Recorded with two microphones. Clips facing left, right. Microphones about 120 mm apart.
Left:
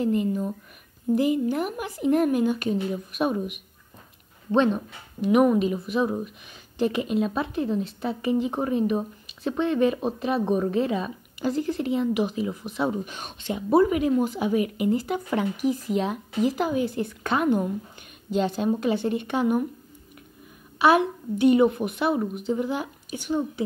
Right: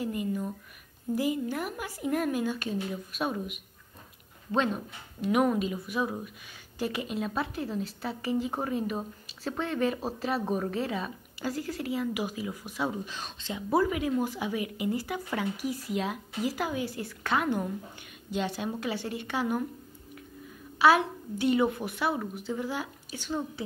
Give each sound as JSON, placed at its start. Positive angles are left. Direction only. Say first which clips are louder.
{"t": 0.2, "sound": "a woman's voice", "louder": "left 6 dB", "side_deg": 25}
{"t": 5.3, "sound": "a woman's voice", "louder": "left 6 dB", "side_deg": 20}
{"t": 20.8, "sound": "a woman's voice", "louder": "left 3 dB", "side_deg": 20}